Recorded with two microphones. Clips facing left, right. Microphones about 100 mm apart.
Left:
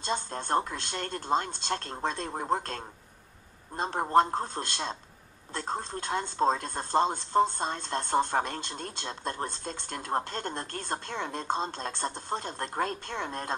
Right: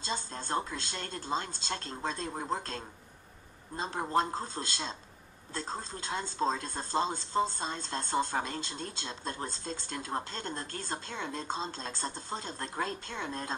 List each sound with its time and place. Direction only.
0.0 s speech: 55° left (ahead or behind)